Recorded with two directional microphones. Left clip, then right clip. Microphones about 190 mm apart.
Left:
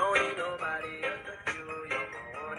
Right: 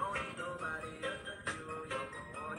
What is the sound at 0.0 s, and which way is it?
Music, 40° left (ahead or behind).